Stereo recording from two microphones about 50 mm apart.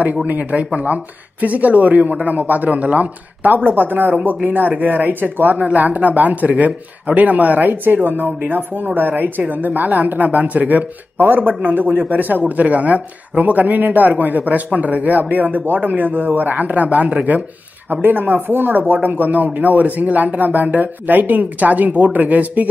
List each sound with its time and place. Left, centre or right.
0.0 s a woman's voice: right